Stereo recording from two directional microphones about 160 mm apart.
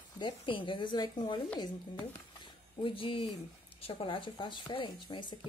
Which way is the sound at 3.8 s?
35° left (ahead or behind).